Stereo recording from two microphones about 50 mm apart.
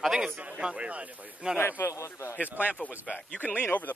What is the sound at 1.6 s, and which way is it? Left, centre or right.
Speech, left.